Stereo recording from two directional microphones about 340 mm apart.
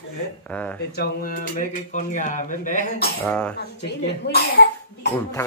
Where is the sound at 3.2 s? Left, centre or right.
Centre.